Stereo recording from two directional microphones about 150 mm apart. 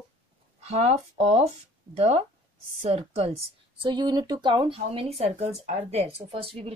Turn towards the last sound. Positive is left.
turn(degrees=-40)  # may be behind; listen again after turning